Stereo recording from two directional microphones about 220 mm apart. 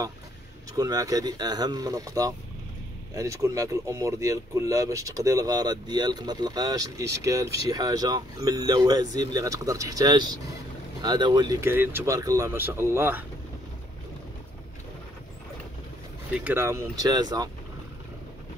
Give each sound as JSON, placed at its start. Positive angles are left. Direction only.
{"t": 0.7, "sound": "speech", "side_deg": -15}
{"t": 16.3, "sound": "speech", "side_deg": -10}